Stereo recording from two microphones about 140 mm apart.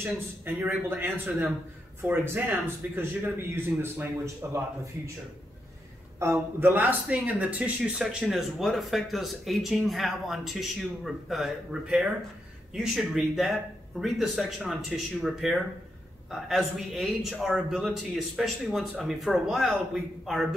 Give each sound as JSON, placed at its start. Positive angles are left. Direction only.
{"t": 0.5, "sound": "a man's voice", "side_deg": -15}
{"t": 6.1, "sound": "speech", "side_deg": -20}